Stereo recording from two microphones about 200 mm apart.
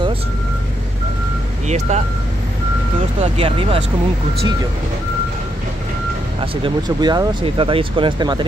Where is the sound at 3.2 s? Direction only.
25° right (ahead or behind).